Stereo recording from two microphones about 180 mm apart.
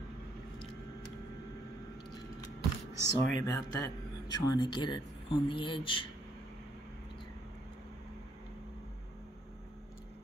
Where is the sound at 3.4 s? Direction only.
15° left (ahead or behind).